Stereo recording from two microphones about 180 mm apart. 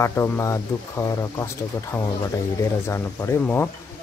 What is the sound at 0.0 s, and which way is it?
Speech, 15° left (ahead or behind).